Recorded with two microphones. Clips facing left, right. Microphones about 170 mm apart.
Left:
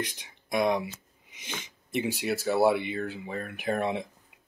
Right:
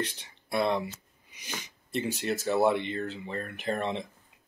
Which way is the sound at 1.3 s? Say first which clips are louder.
Left 1 dB; 25° left (ahead or behind).